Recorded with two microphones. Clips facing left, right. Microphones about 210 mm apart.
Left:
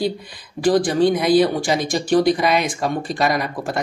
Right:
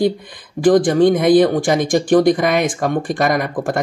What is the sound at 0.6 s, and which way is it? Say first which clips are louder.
Speech: right 4 dB; 50° right (ahead or behind).